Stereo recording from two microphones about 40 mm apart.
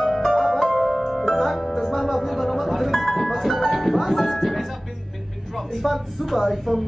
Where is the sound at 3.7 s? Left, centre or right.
Centre.